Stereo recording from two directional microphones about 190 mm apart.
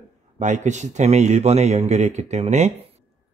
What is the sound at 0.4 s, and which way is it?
Speech, 40° right (ahead or behind).